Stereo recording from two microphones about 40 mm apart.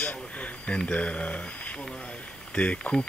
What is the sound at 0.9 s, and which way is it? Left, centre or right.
A man's voice, left.